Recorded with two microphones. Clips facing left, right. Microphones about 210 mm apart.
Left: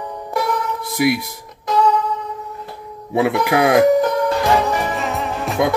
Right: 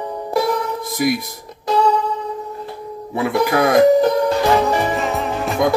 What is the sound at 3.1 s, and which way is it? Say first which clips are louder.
Speech: left 1 dB; 65° left (ahead or behind).